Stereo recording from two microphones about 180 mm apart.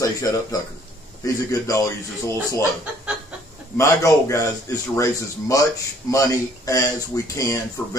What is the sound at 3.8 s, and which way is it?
Speech, 15° left (ahead or behind).